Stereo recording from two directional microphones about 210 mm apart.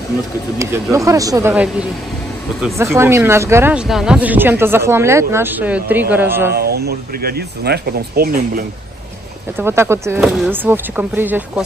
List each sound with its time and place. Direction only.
0.6 s speech: 15° right (ahead or behind)
6.5 s speech: 50° right (ahead or behind)
9.6 s speech: 10° right (ahead or behind)
10.2 s speech: centre (ahead or behind)